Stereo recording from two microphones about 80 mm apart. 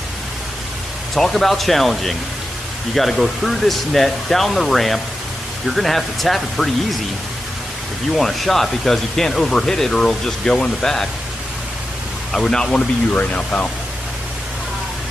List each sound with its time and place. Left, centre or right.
1.1 s speech: centre
8.1 s speech: centre
12.3 s speech: centre
13.1 s speech: centre